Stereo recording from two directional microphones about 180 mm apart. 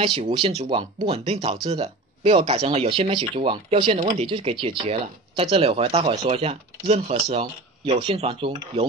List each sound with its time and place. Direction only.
0.0 s speech: 30° right (ahead or behind)